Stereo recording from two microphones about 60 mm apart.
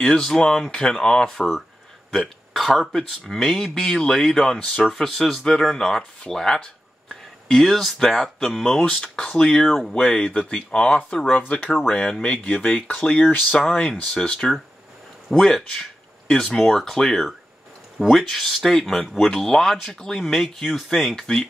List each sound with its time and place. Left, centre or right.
0.0 s speech: centre
2.0 s hiccup: centre
3.3 s speech: centre
4.6 s speech: left
4.9 s speech: centre
8.8 s speech: centre
11.9 s speech: centre
15.3 s speech: centre